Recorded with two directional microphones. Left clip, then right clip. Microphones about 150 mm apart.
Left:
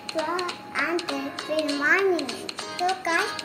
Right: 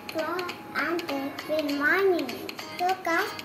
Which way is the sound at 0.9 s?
35° left (ahead or behind).